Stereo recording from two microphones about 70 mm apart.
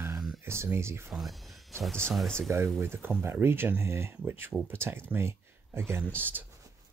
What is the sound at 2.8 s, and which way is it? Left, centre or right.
Speech, right.